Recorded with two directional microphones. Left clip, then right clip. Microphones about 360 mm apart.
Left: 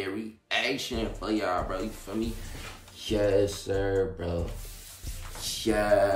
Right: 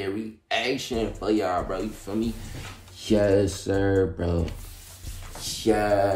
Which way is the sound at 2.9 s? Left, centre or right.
Centre.